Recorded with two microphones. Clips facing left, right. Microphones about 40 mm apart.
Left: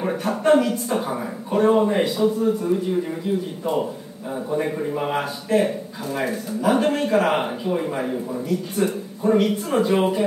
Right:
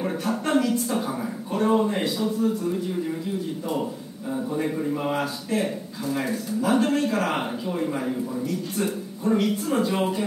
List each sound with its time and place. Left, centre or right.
0.4 s speech: centre
4.5 s speech: left
8.5 s speech: centre
9.2 s speech: centre